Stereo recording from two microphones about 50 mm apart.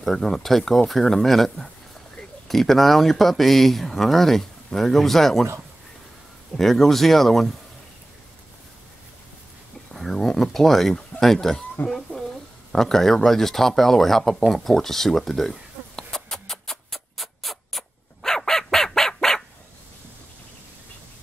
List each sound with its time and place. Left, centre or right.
0.0 s speech: centre
6.5 s speech: centre
9.9 s speech: centre
12.1 s a sound: left
12.7 s speech: centre
14.5 s a sound: centre